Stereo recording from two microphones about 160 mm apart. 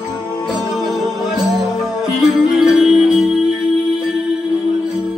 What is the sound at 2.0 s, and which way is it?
Music, 5° right (ahead or behind).